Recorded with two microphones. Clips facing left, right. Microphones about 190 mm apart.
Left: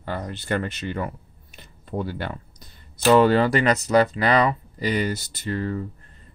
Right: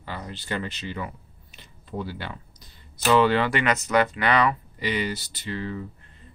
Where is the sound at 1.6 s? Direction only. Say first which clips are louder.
Left 4 dB; 50° left (ahead or behind).